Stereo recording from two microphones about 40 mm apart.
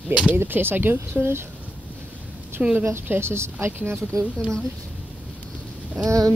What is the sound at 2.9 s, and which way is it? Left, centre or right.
A woman's voice, right.